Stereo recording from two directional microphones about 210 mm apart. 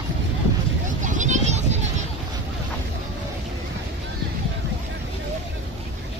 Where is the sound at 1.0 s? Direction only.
35° right (ahead or behind).